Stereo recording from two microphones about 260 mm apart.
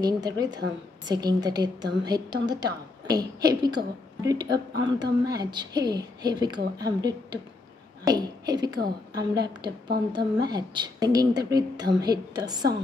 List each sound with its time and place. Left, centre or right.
0.0 s a woman's voice: centre